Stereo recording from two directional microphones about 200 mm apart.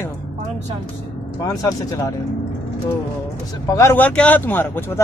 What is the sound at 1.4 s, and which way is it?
Speech, 15° left (ahead or behind).